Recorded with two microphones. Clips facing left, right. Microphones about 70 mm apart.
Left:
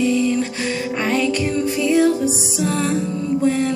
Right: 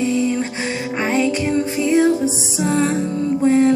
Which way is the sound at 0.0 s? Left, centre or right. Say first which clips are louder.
Left 1 dB; right.